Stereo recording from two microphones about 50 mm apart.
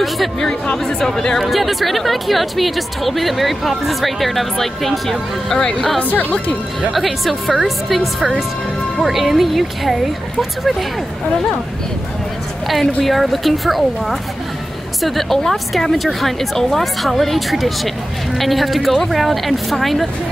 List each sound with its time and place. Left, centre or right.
0.8 s speech: centre
5.9 s speech: left
6.9 s speech: centre
13.0 s speech: centre